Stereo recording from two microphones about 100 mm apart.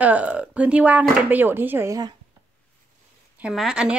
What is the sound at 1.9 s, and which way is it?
Speech, 40° right (ahead or behind).